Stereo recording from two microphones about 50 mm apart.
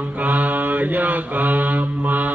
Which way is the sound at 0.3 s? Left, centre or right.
Right.